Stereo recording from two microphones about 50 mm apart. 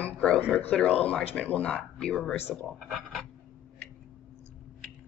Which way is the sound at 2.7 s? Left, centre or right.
Centre.